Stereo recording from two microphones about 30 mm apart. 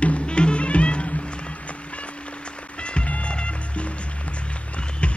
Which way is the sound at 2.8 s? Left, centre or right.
Left.